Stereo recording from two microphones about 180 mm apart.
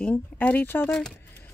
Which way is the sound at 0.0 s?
10° left (ahead or behind).